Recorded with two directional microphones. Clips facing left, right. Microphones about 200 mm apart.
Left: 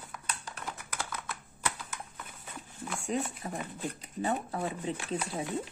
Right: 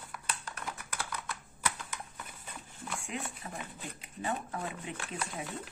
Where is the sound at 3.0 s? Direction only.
40° left (ahead or behind).